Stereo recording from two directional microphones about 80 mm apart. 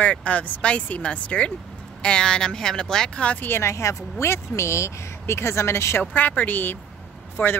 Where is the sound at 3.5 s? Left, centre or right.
Left.